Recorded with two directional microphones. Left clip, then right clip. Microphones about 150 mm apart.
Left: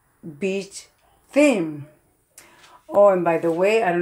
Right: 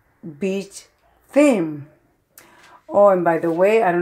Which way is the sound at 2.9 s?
15° right (ahead or behind).